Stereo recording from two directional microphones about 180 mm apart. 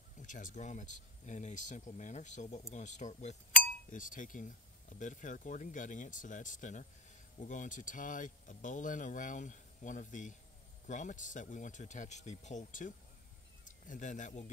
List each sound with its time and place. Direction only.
0.2 s speech: 45° left (ahead or behind)